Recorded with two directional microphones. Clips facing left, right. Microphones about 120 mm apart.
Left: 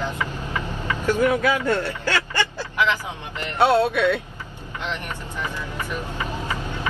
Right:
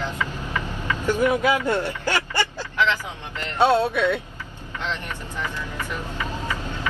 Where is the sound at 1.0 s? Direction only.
15° right (ahead or behind).